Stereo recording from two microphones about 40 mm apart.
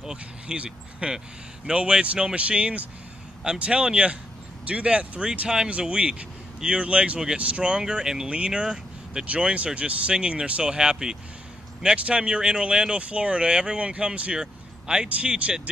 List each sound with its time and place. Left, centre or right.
0.0 s a sound: centre
0.9 s speech: right
8.3 s speech: right
9.3 s speech: right; by 11.1 s centre
11.8 s speech: right
14.4 s a sound: centre
15.2 s speech: right